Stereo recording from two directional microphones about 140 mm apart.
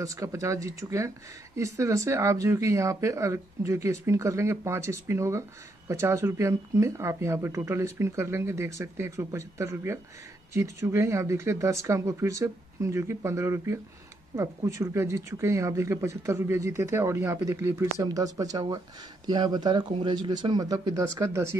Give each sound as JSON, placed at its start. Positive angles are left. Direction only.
{"t": 0.0, "sound": "speech", "side_deg": -25}